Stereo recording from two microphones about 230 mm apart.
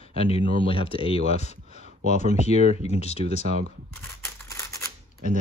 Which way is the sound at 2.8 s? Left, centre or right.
Left.